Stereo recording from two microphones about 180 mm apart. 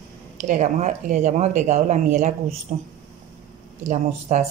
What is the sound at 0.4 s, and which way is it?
Speech, 40° right (ahead or behind).